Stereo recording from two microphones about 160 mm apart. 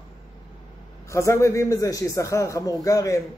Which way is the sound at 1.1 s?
20° left (ahead or behind).